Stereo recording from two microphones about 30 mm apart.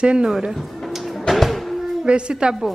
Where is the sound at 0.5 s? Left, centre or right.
Centre.